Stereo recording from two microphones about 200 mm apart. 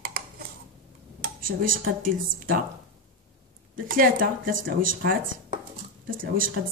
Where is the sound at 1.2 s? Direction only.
45° right (ahead or behind).